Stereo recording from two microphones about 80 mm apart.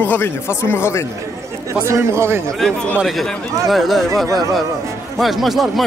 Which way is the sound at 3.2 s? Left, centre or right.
Centre.